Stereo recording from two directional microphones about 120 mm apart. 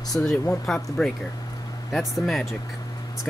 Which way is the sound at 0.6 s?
Centre (ahead or behind).